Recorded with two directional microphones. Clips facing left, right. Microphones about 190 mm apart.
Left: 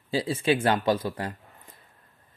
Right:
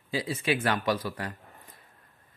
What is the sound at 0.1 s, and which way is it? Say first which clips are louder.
Speech: left 4 dB; 30° left (ahead or behind).